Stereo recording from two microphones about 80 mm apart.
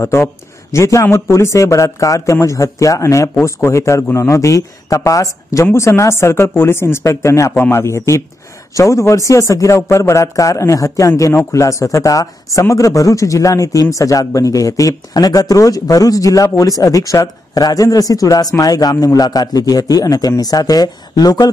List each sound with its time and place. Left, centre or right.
0.0 s a man's voice: left